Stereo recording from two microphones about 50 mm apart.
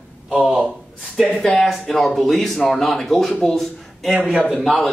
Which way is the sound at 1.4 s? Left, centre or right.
Centre.